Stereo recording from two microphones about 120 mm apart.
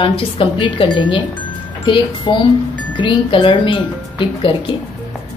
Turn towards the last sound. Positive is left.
turn(degrees=45)  # may be behind; listen again after turning